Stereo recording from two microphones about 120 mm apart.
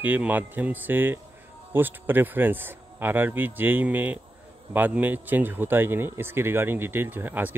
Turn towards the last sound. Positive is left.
turn(degrees=-15)  # may be behind; listen again after turning